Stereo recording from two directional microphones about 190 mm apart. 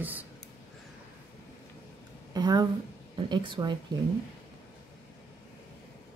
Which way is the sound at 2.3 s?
20° right (ahead or behind).